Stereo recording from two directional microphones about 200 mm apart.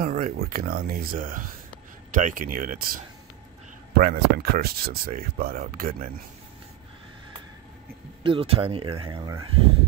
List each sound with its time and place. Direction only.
0.2 s speech: 45° right (ahead or behind)
8.2 s speech: 25° right (ahead or behind)